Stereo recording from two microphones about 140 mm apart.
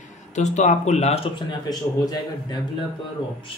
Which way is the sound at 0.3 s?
55° left (ahead or behind).